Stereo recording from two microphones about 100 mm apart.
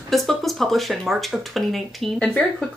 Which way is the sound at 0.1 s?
Centre (ahead or behind).